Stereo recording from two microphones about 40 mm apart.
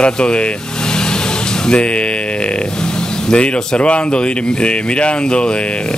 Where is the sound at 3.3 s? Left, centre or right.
Left.